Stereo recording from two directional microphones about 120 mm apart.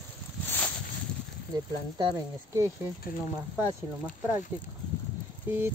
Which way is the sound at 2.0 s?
40° right (ahead or behind).